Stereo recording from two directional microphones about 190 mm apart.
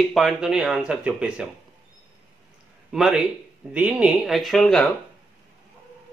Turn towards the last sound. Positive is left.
turn(degrees=5)  # may be behind; listen again after turning